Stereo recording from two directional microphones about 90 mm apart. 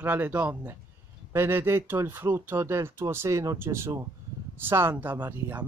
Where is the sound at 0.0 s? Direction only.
20° right (ahead or behind).